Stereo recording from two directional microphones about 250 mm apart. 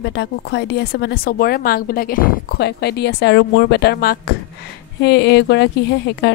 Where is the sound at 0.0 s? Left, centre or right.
Left.